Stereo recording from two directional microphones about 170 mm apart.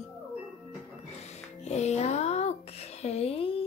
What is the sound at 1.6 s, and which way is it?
Speech, 40° left (ahead or behind).